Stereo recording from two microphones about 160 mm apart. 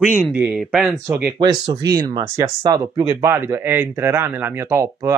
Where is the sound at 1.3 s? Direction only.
30° right (ahead or behind).